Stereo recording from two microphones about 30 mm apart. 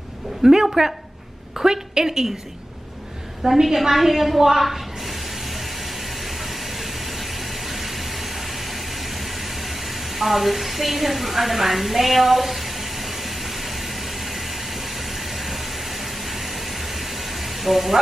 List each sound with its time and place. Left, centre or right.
0.4 s a woman's voice: centre
3.4 s a woman's voice: centre
6.2 s train: centre